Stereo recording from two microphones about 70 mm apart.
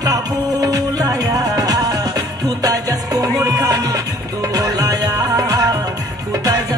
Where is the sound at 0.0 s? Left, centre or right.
Right.